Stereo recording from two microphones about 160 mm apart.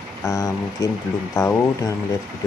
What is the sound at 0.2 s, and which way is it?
Speech, 20° left (ahead or behind).